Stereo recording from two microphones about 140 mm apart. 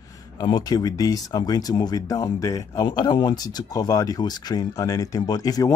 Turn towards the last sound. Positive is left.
turn(degrees=25)  # may be behind; listen again after turning